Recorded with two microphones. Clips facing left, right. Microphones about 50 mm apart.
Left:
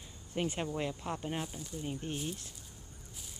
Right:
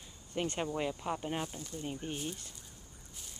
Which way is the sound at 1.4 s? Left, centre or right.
Centre.